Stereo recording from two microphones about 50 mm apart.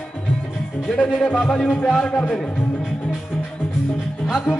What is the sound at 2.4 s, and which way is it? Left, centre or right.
Music, left.